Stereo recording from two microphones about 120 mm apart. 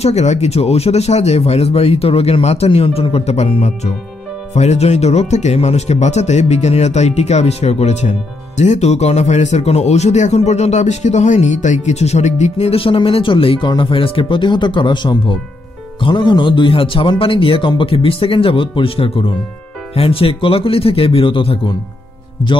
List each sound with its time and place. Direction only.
0.0 s speech: 65° left (ahead or behind); by 22.5 s 45° left (ahead or behind)